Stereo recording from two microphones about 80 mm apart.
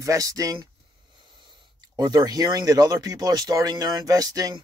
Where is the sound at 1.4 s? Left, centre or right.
Right.